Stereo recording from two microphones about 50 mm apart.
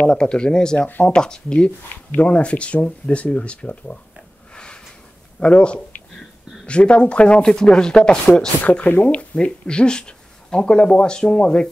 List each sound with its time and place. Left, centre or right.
0.0 s speech: centre
0.7 s speech: left
1.0 s speech: centre
5.4 s speech: left